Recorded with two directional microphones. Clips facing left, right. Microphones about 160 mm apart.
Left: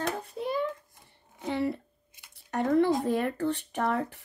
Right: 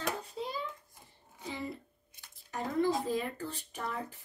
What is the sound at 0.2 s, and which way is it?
Hands, 60° left (ahead or behind).